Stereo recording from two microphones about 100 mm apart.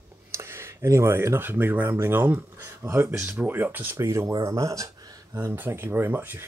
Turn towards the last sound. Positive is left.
turn(degrees=-20)  # may be behind; listen again after turning